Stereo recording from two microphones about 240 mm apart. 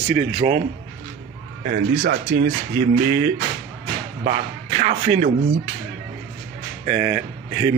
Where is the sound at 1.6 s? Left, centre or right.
Right.